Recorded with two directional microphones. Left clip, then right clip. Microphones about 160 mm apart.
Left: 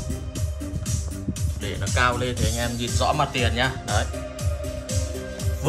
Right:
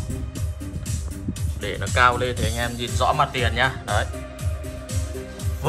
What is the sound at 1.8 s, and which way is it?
Speech, 10° left (ahead or behind).